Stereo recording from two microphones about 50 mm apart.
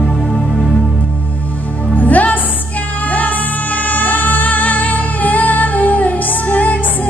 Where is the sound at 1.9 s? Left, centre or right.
Left.